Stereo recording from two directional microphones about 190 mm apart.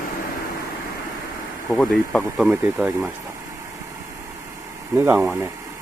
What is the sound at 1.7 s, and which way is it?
Speech, 5° left (ahead or behind).